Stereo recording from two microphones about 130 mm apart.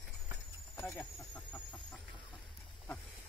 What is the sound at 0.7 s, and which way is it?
Speech, 15° left (ahead or behind).